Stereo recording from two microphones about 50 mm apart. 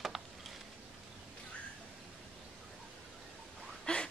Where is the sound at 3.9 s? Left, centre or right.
Left.